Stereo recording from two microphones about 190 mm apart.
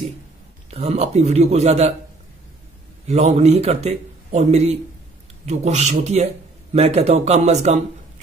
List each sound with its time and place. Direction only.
0.7 s a man's voice: 30° right (ahead or behind)
3.1 s a man's voice: 35° right (ahead or behind)